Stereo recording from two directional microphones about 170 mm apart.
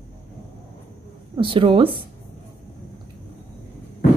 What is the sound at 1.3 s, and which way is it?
Speech, 30° right (ahead or behind).